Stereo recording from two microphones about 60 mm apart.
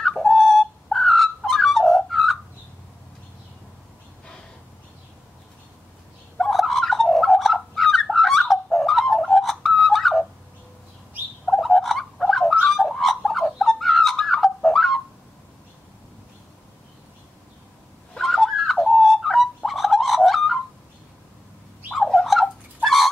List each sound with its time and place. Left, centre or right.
0.0 s a sound: centre
6.3 s fowl: centre
11.4 s bird: centre
18.2 s bird: centre
21.9 s fowl: centre